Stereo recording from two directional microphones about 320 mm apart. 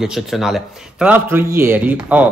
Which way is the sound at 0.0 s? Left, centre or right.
Centre.